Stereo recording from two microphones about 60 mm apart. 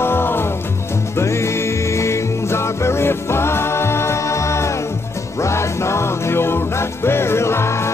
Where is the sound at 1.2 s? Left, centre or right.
Left.